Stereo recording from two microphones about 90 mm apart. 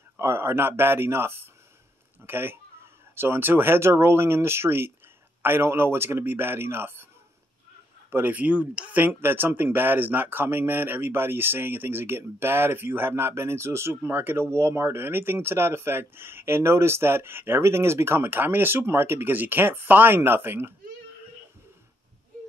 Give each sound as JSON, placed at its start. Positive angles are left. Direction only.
{"t": 0.2, "sound": "speech", "side_deg": -25}
{"t": 8.1, "sound": "speech", "side_deg": -20}